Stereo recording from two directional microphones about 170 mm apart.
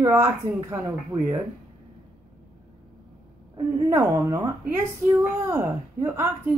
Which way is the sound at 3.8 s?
15° right (ahead or behind).